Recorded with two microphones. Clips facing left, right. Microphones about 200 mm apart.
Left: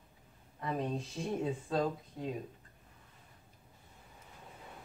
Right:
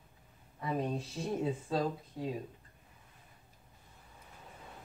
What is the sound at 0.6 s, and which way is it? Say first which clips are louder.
Speech: right 1 dB; 5° right (ahead or behind).